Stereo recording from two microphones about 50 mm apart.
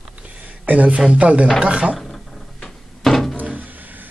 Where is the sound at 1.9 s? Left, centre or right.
Centre.